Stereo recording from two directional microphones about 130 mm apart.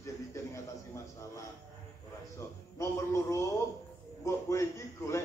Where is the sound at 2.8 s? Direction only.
20° left (ahead or behind).